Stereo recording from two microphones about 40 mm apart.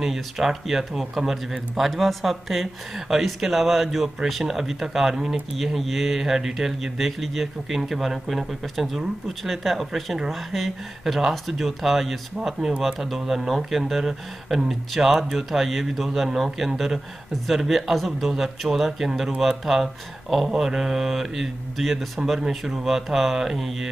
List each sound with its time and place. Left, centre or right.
0.0 s speech: centre
5.8 s speech: centre
12.5 s speech: centre
12.8 s speech: centre